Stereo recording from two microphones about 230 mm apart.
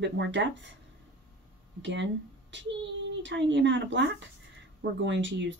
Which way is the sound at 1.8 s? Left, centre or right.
Right.